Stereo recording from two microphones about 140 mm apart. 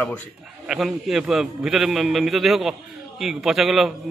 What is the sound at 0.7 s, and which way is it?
A man's voice, centre (ahead or behind).